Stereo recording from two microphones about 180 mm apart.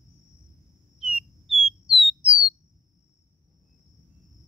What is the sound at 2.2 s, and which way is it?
Bird, 30° right (ahead or behind).